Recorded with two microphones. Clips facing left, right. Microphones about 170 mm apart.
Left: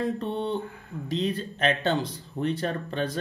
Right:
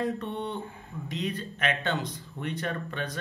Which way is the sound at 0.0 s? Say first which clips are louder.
Left 3 dB; 30° left (ahead or behind).